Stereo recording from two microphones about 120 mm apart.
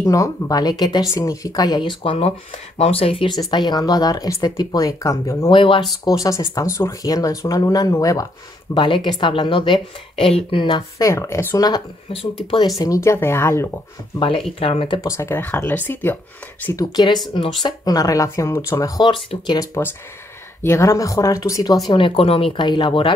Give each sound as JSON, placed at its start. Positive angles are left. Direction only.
{"t": 0.0, "sound": "speech", "side_deg": 25}
{"t": 3.3, "sound": "speech", "side_deg": 35}
{"t": 5.5, "sound": "speech", "side_deg": 45}
{"t": 6.0, "sound": "speech", "side_deg": 30}
{"t": 8.7, "sound": "speech", "side_deg": 40}
{"t": 11.0, "sound": "speech", "side_deg": 25}
{"t": 12.7, "sound": "speech", "side_deg": 30}
{"t": 14.6, "sound": "speech", "side_deg": 50}
{"t": 15.0, "sound": "speech", "side_deg": 20}
{"t": 16.7, "sound": "speech", "side_deg": 35}
{"t": 20.6, "sound": "speech", "side_deg": 25}